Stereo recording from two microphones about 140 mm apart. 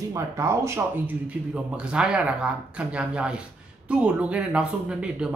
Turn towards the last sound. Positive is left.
turn(degrees=-5)  # may be behind; listen again after turning